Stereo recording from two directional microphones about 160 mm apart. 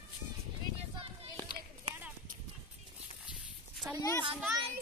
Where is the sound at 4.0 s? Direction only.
20° left (ahead or behind).